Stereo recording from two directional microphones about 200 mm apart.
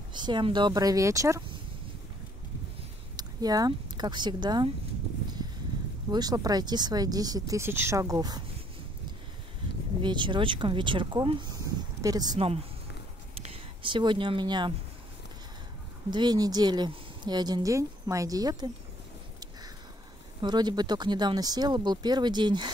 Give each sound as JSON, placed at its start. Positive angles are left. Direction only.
{"t": 0.1, "sound": "speech", "side_deg": -20}
{"t": 3.2, "sound": "speech", "side_deg": -20}
{"t": 6.0, "sound": "speech", "side_deg": -20}
{"t": 10.0, "sound": "speech", "side_deg": -25}
{"t": 16.1, "sound": "speech", "side_deg": -20}
{"t": 20.4, "sound": "speech", "side_deg": -20}